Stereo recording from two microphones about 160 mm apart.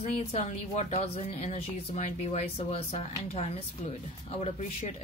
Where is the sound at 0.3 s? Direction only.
45° left (ahead or behind).